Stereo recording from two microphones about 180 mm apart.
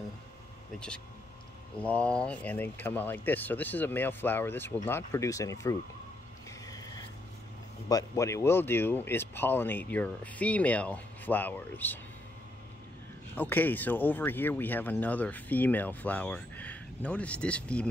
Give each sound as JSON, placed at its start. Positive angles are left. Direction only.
{"t": 0.7, "sound": "speech", "side_deg": 5}
{"t": 6.7, "sound": "vehicle", "side_deg": 20}
{"t": 7.9, "sound": "speech", "side_deg": 15}
{"t": 13.4, "sound": "speech", "side_deg": 10}